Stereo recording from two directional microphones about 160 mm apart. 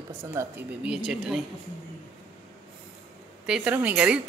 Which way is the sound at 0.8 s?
5° right (ahead or behind).